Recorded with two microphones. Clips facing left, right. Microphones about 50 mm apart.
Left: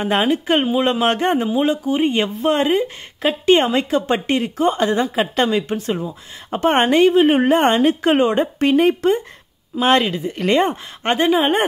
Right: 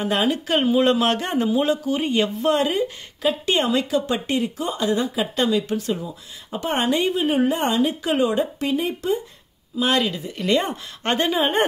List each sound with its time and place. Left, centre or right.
0.0 s speech: left
9.8 s speech: left
11.1 s speech: left